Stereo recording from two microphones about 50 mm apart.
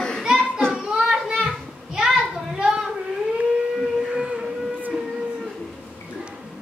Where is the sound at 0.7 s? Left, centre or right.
Centre.